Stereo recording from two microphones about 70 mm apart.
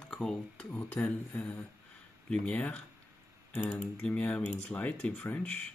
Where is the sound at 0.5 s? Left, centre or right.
Left.